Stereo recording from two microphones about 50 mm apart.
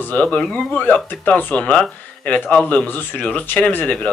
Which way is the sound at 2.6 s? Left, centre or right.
Left.